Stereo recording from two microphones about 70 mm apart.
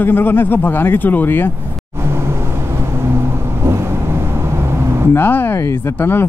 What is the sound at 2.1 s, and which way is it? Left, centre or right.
Vehicle, right.